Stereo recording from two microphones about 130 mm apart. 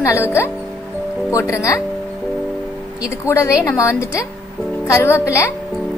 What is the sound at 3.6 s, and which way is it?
Speech, 20° left (ahead or behind).